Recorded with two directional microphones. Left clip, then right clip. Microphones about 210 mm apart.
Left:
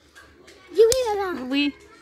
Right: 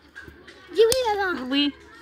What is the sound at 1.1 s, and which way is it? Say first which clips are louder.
Speech: right 1 dB; 10° left (ahead or behind).